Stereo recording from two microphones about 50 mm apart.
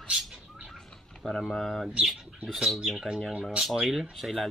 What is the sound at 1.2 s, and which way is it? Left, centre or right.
Speech, centre.